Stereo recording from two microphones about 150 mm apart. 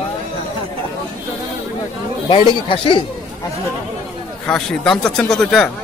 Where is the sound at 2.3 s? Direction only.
35° left (ahead or behind).